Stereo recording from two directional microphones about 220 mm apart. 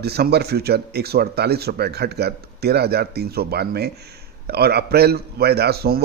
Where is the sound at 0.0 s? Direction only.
45° right (ahead or behind).